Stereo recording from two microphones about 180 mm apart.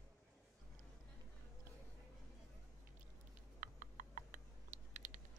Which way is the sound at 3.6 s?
50° right (ahead or behind).